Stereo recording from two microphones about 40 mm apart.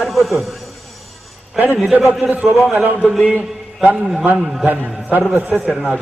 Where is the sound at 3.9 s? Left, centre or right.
Centre.